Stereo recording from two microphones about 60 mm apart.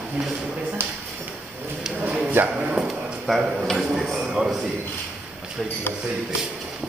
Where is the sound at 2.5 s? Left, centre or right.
Right.